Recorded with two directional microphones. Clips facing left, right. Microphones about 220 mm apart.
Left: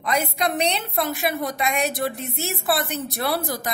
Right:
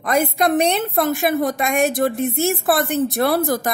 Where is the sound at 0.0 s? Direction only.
50° right (ahead or behind).